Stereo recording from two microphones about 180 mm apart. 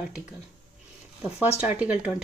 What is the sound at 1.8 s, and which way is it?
Speech, 5° right (ahead or behind).